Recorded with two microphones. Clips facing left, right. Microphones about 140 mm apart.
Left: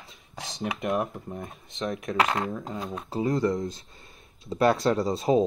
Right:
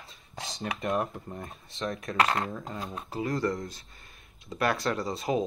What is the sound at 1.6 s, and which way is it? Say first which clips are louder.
Speech: left 3 dB; 15° left (ahead or behind).